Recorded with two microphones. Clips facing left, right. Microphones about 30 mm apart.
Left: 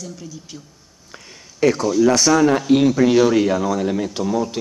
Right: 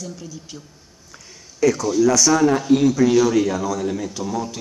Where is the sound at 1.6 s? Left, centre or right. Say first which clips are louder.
Left 1 dB; left.